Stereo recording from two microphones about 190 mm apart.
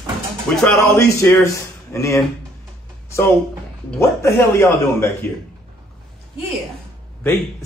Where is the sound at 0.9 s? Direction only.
15° left (ahead or behind).